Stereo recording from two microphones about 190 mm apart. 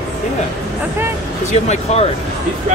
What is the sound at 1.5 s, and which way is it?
Speech, 35° left (ahead or behind).